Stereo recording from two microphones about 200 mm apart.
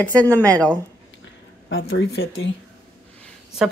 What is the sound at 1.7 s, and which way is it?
Speech, 60° left (ahead or behind).